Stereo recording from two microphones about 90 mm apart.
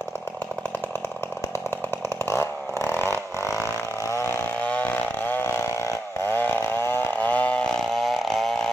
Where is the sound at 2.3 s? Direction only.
30° left (ahead or behind).